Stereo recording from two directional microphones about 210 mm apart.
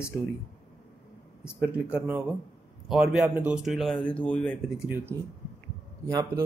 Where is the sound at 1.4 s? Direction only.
5° right (ahead or behind).